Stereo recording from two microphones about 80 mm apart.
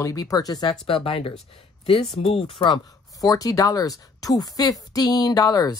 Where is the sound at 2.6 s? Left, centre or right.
Left.